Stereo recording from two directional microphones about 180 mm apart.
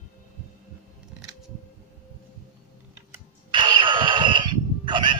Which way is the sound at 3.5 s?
25° right (ahead or behind).